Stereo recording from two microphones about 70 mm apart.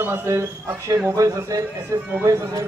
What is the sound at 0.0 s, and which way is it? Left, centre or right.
A man's voice, right.